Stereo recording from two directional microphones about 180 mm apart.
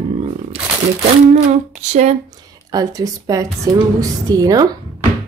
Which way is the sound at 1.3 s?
40° right (ahead or behind).